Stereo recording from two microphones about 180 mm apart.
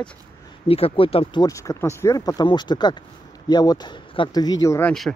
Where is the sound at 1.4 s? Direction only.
20° left (ahead or behind).